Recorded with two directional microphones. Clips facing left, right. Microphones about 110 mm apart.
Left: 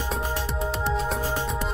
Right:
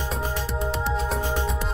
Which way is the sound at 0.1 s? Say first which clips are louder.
Left 1 dB; centre (ahead or behind).